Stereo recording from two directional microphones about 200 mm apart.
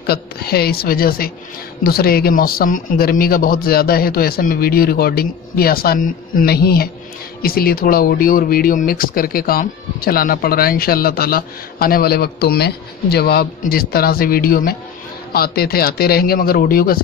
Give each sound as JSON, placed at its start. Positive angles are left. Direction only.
{"t": 0.0, "sound": "speech", "side_deg": 50}